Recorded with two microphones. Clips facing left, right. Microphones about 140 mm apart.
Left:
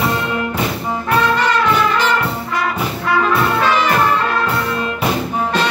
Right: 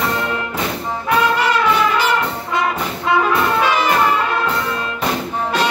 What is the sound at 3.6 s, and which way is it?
Music, 10° right (ahead or behind).